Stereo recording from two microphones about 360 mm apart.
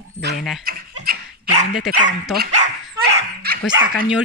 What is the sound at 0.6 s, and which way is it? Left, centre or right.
Dog, right.